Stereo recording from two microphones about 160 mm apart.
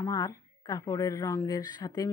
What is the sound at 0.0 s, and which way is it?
A woman's voice, 20° left (ahead or behind).